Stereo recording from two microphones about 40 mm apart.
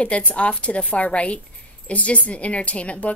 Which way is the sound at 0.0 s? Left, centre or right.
Left.